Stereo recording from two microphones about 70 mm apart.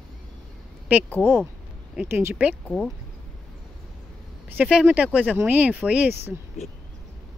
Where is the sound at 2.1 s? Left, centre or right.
Right.